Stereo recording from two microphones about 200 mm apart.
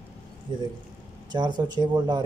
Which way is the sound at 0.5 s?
20° right (ahead or behind).